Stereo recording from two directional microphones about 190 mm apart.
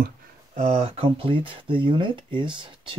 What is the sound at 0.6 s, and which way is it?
Speech, 35° right (ahead or behind).